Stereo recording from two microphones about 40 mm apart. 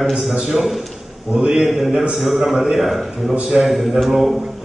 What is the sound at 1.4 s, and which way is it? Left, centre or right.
Speech, centre.